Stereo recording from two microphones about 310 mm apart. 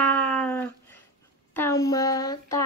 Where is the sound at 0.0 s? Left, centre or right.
Centre.